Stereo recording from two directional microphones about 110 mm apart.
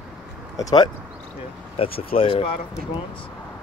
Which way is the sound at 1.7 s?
60° left (ahead or behind).